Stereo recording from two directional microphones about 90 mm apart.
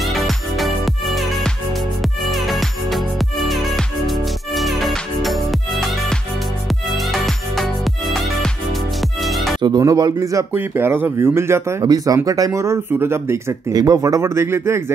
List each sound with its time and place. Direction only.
0.0 s music: centre (ahead or behind)
9.8 s speech: 45° right (ahead or behind)
10.5 s speech: 25° right (ahead or behind)
11.8 s speech: 45° right (ahead or behind); by 13.6 s 30° right (ahead or behind)
13.7 s speech: 45° right (ahead or behind)